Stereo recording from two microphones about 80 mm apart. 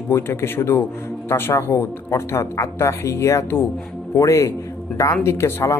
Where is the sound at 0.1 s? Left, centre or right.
Left.